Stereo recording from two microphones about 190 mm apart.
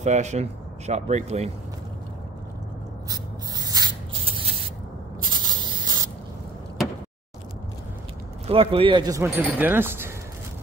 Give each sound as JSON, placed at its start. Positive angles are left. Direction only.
{"t": 0.0, "sound": "speech", "side_deg": -35}
{"t": 3.1, "sound": "spray", "side_deg": -20}
{"t": 8.5, "sound": "speech", "side_deg": -30}